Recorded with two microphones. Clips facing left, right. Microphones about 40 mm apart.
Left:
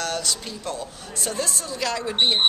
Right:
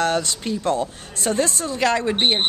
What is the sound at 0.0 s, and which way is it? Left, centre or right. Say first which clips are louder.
A woman's voice: right 6 dB; right.